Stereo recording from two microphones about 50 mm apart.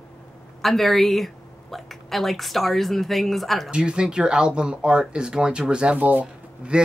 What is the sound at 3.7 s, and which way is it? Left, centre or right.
Speech, centre.